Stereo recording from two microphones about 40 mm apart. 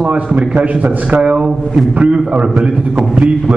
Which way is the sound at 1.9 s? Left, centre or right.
Right.